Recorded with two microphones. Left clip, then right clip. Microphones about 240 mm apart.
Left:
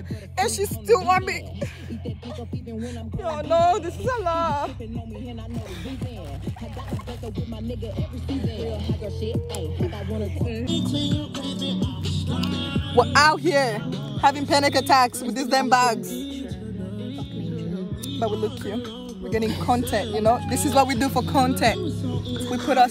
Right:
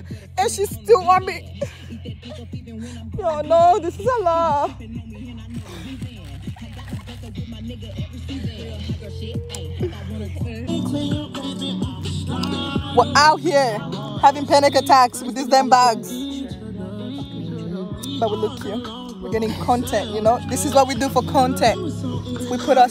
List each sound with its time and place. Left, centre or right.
0.8 s speech: centre
2.8 s speech: centre
7.6 s speech: centre
10.2 s music: left
10.7 s speech: centre
12.4 s music: centre
13.1 s speech: centre
13.8 s music: centre
14.2 s speech: centre
16.3 s music: centre
16.8 s music: centre
19.2 s speech: centre